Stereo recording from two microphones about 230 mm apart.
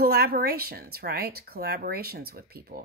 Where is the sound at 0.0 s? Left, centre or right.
Right.